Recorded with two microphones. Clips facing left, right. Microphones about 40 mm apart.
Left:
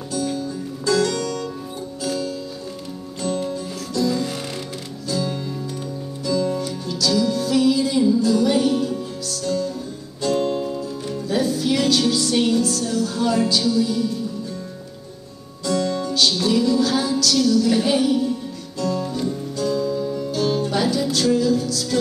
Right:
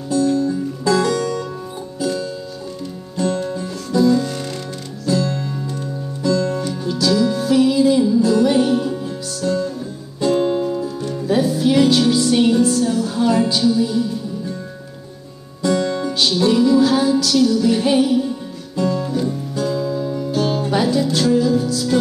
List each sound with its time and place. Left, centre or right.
0.8 s music: centre
4.1 s music: centre
6.6 s music: centre
15.6 s music: right